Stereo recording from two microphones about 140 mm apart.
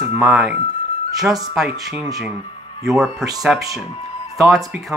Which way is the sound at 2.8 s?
Centre (ahead or behind).